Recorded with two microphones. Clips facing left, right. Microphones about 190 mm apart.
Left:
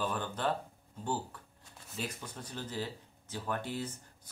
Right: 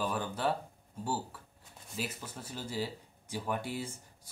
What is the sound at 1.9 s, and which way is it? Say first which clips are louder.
Speech: right 1 dB; 5° right (ahead or behind).